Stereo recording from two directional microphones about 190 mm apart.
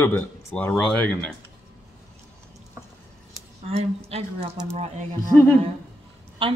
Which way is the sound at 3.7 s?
30° right (ahead or behind).